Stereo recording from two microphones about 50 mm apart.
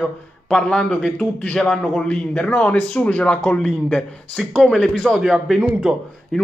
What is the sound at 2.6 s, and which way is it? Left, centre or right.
A man's voice, left.